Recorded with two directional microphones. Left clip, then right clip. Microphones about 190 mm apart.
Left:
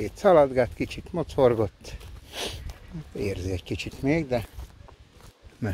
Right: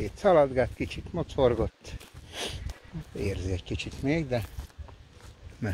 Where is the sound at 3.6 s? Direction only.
90° left.